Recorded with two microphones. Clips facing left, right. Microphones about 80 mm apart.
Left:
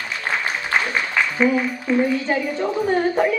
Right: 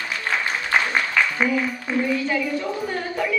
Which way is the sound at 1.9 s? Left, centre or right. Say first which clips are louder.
Left 6 dB; centre.